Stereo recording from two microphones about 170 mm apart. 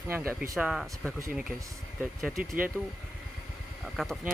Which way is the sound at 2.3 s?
55° right (ahead or behind).